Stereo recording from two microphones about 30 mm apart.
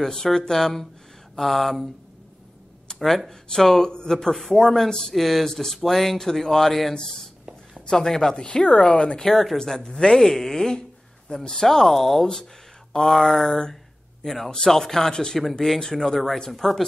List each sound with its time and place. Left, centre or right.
0.0 s speech: centre
2.9 s a sound: left
3.3 s speech: centre
4.3 s speech: centre
5.1 s speech: centre; by 9.2 s left
9.3 s speech: centre
9.6 s speech: left
14.2 s speech: centre